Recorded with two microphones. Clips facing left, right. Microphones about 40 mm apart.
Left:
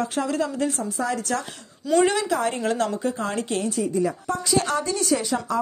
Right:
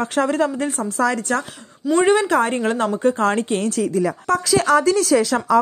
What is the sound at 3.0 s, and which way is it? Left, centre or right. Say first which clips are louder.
Speech: right 8 dB; right.